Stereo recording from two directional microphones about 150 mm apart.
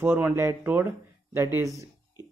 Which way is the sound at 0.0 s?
15° right (ahead or behind).